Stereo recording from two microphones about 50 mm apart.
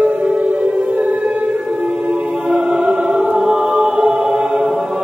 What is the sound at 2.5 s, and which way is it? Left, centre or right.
Choir, centre.